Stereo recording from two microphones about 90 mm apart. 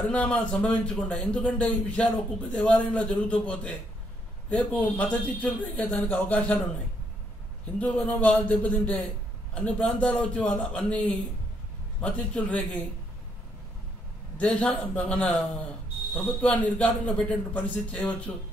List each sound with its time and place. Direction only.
0.1 s a man's voice: 15° left (ahead or behind)
7.8 s a man's voice: 15° left (ahead or behind)
14.4 s a man's voice: 10° left (ahead or behind)